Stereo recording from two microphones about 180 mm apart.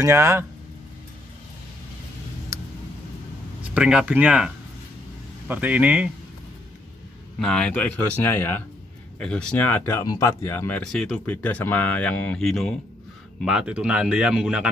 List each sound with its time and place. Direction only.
0.0 s speech: 15° right (ahead or behind)
2.5 s a sound: 20° right (ahead or behind)
3.6 s speech: 5° right (ahead or behind)
5.5 s speech: 10° right (ahead or behind)
7.3 s speech: 5° left (ahead or behind)
10.8 s speech: 5° left (ahead or behind)